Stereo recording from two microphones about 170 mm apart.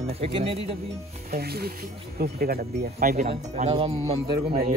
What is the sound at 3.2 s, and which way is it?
Speech, 40° right (ahead or behind).